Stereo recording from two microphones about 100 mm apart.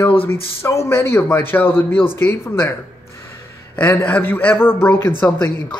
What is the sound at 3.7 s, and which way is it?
A man's voice, 15° left (ahead or behind).